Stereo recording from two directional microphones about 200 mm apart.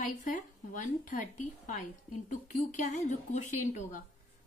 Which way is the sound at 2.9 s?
35° left (ahead or behind).